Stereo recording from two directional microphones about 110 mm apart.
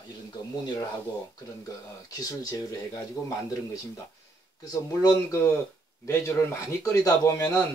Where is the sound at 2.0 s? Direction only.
35° left (ahead or behind).